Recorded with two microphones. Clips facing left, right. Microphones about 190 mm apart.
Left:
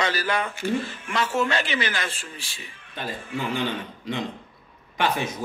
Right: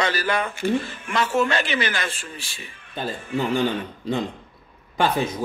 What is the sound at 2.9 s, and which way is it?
Speech, 35° right (ahead or behind).